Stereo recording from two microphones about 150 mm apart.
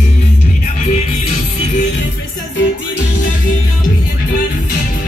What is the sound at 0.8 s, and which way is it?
Music, 50° left (ahead or behind).